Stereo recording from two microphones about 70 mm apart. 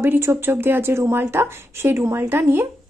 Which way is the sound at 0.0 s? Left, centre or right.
Right.